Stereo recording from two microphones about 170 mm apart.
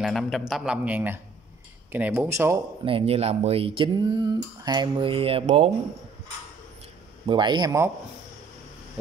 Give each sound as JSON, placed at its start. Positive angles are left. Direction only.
{"t": 0.0, "sound": "a man's voice", "side_deg": 0}
{"t": 2.8, "sound": "speech", "side_deg": -30}
{"t": 7.2, "sound": "speech", "side_deg": -25}